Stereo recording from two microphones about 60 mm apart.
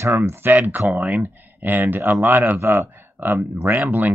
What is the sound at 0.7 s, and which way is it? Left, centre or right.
Speech, right.